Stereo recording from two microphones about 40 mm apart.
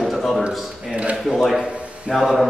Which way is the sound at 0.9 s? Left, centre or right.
Right.